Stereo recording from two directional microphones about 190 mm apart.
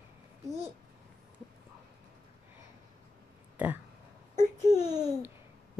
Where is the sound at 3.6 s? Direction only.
5° right (ahead or behind).